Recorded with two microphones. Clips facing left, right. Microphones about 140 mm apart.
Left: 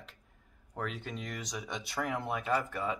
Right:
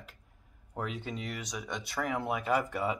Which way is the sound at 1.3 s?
Centre (ahead or behind).